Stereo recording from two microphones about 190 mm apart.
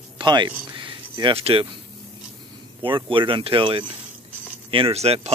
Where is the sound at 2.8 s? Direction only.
25° right (ahead or behind).